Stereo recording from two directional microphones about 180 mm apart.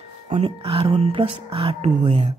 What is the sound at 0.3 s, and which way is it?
Speech, 35° right (ahead or behind).